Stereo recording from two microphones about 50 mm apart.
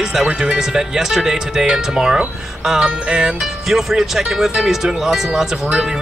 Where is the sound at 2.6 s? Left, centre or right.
Centre.